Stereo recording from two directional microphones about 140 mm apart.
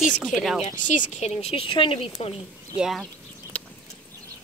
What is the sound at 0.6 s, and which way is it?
Speech, 65° left (ahead or behind).